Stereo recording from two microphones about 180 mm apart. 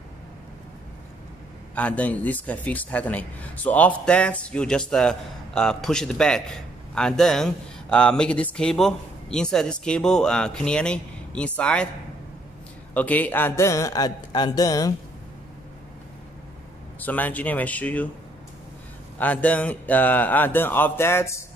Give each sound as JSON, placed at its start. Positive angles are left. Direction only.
{"t": 1.8, "sound": "a man's voice", "side_deg": 5}
{"t": 12.9, "sound": "speech", "side_deg": 10}
{"t": 17.0, "sound": "speech", "side_deg": 10}
{"t": 19.1, "sound": "speech", "side_deg": 10}